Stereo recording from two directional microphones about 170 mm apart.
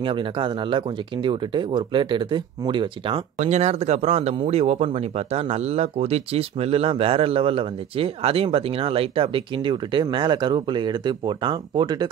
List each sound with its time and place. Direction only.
0.0 s speech: 30° right (ahead or behind)